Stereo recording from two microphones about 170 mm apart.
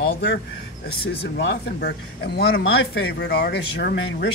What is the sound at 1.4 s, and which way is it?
Speech, 85° left.